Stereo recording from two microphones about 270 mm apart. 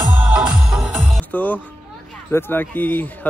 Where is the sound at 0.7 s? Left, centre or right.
Centre.